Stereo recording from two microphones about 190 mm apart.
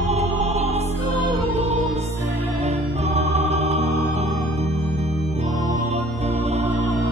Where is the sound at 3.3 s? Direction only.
35° right (ahead or behind).